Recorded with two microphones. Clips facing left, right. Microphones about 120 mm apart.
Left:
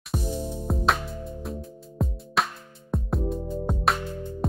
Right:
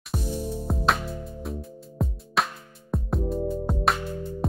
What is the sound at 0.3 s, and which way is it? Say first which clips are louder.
Music: right 4 dB; 15° left (ahead or behind).